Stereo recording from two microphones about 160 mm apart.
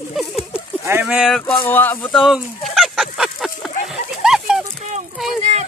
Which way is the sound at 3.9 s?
5° right (ahead or behind).